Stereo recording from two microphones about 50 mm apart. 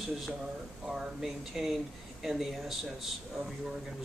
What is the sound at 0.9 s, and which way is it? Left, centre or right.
Speech, centre.